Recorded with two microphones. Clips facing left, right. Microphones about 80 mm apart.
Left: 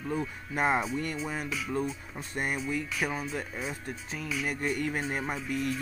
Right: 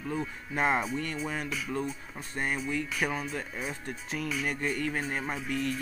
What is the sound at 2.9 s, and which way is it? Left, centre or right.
Speech, centre.